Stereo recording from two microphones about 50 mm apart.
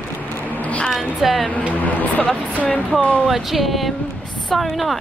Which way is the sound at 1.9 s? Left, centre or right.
Left.